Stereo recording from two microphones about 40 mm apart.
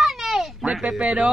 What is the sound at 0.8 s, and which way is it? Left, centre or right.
Speech, right.